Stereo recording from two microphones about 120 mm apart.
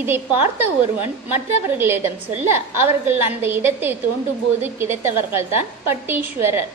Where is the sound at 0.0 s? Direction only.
20° right (ahead or behind).